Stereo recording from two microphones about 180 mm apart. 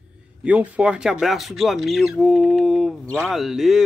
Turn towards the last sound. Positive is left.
turn(degrees=0)  # may be behind; listen again after turning